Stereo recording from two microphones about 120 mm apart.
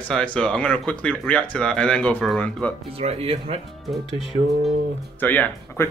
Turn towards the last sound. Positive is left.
turn(degrees=20)  # may be behind; listen again after turning